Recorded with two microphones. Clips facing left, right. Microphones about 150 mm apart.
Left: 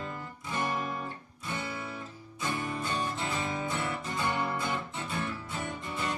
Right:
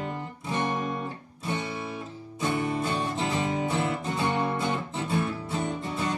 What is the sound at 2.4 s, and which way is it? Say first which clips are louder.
Music: right 6 dB; 30° right (ahead or behind).